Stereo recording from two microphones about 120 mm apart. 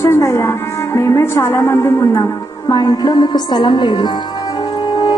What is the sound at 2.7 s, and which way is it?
A woman's voice, 35° left (ahead or behind).